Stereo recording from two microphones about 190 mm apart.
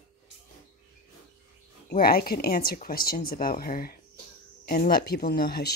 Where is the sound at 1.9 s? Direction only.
50° left (ahead or behind).